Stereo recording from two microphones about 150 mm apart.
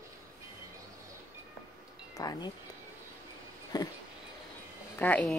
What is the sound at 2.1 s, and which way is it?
Speech, 25° left (ahead or behind).